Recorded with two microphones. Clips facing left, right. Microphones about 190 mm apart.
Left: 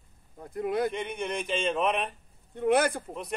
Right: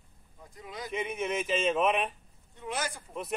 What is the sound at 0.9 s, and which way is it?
Speech, 5° right (ahead or behind).